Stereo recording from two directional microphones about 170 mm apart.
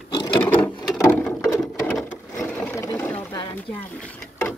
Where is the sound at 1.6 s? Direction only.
10° left (ahead or behind).